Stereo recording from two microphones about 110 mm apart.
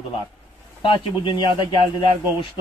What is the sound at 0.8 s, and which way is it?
A man's voice, 45° left (ahead or behind).